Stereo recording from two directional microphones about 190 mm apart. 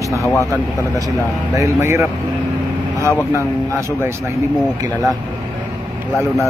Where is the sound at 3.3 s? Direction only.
15° right (ahead or behind).